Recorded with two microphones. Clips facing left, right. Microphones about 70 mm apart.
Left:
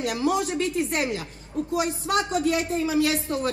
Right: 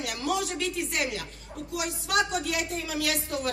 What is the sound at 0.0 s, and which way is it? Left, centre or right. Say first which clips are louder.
Speech: left 5 dB; left.